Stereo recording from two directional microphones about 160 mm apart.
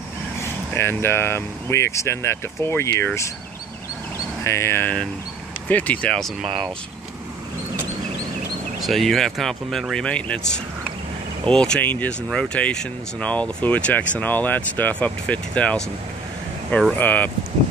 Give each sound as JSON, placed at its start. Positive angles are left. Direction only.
{"t": 0.4, "sound": "speech", "side_deg": 15}
{"t": 4.4, "sound": "speech", "side_deg": 15}
{"t": 8.8, "sound": "speech", "side_deg": 0}
{"t": 11.4, "sound": "speech", "side_deg": 5}
{"t": 16.9, "sound": "speech", "side_deg": 10}